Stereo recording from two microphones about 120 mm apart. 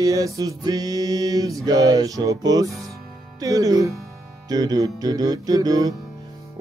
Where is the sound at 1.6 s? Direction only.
30° right (ahead or behind).